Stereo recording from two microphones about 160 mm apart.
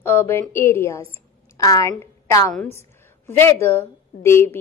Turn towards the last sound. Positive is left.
turn(degrees=15)  # may be behind; listen again after turning